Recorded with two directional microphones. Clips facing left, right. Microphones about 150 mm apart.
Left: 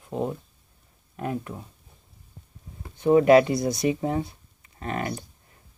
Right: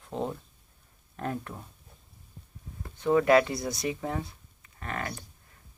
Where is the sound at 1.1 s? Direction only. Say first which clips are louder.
Left 4 dB; 10° left (ahead or behind).